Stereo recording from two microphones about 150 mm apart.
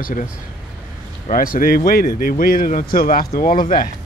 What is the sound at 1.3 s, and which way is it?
Speech, 70° left (ahead or behind).